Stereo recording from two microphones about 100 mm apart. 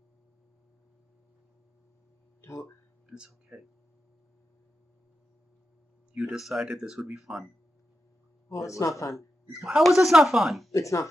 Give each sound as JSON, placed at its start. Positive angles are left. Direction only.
{"t": 2.4, "sound": "speech", "side_deg": 35}
{"t": 3.1, "sound": "speech", "side_deg": -10}
{"t": 6.1, "sound": "speech", "side_deg": -5}
{"t": 8.5, "sound": "a man's voice", "side_deg": 30}
{"t": 9.5, "sound": "speech", "side_deg": -5}
{"t": 10.7, "sound": "a man's voice", "side_deg": 30}